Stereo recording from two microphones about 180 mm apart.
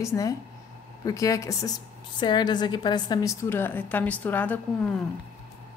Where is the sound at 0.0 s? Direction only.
15° left (ahead or behind).